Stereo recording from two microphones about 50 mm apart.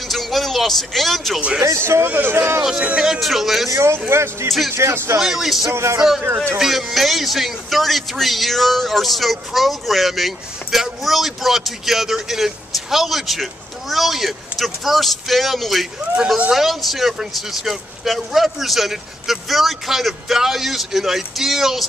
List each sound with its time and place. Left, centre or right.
0.1 s a man's voice: centre
1.6 s a man's voice: right
2.0 s a man's voice: right
3.0 s a man's voice: centre
3.7 s a man's voice: right
5.2 s speech: centre
5.7 s a man's voice: right
6.6 s a man's voice: centre